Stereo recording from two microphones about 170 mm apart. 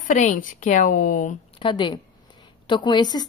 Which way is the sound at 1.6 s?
30° left (ahead or behind).